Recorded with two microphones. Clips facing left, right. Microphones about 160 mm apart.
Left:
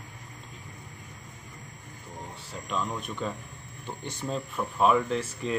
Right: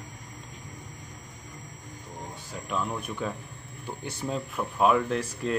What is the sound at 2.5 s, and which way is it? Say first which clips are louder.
Speech: right 1 dB; 5° right (ahead or behind).